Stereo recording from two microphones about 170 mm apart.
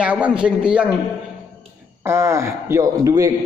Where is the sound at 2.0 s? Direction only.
15° right (ahead or behind).